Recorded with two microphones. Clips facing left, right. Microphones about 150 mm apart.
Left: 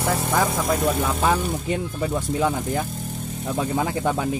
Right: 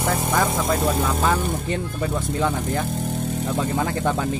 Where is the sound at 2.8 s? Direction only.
75° right (ahead or behind).